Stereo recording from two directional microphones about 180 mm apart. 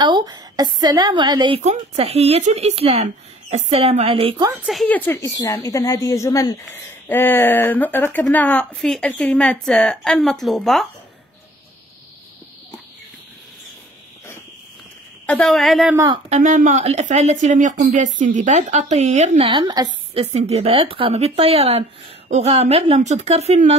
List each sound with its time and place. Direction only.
0.0 s a woman's voice: 25° right (ahead or behind)
1.6 s speech: 35° right (ahead or behind)
4.6 s a woman's voice: 5° left (ahead or behind)
15.2 s a woman's voice: 5° left (ahead or behind)
16.3 s speech: 40° right (ahead or behind); by 19.9 s 25° right (ahead or behind)
20.2 s speech: 35° right (ahead or behind)